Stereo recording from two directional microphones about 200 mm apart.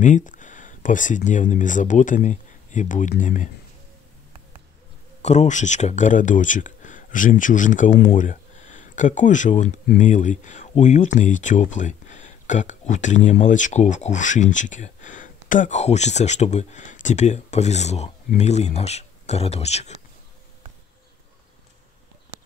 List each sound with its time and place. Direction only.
0.0 s speech: 40° left (ahead or behind)
5.2 s speech: 35° left (ahead or behind)